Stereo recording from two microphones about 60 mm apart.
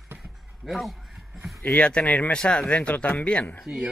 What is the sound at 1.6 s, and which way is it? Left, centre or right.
Speech, left.